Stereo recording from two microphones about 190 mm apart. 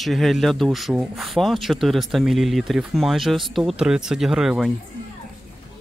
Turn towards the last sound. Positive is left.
turn(degrees=0)  # may be behind; listen again after turning